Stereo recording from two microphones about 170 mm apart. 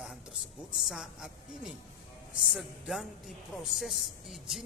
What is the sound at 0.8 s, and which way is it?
A man's voice, centre (ahead or behind).